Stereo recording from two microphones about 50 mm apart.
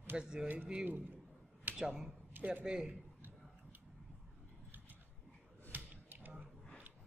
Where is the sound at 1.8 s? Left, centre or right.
Centre.